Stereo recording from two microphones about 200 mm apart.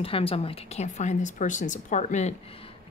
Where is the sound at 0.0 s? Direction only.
30° left (ahead or behind).